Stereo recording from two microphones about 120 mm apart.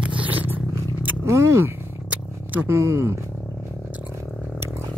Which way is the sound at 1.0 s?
25° right (ahead or behind).